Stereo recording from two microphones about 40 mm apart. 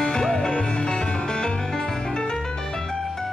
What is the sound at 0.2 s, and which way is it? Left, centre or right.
Music, centre.